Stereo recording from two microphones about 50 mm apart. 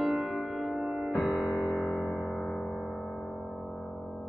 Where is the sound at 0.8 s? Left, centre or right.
Right.